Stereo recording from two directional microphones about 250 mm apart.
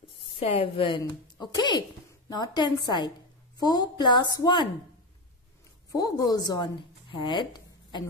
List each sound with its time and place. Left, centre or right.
0.4 s a woman's voice: left
5.9 s a woman's voice: centre